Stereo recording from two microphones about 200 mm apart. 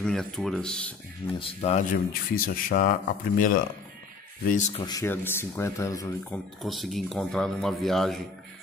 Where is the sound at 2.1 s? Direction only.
45° left (ahead or behind).